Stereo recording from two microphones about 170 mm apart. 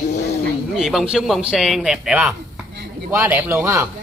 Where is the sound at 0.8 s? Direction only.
Centre (ahead or behind).